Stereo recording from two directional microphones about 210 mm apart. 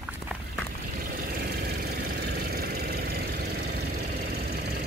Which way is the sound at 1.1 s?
45° right (ahead or behind).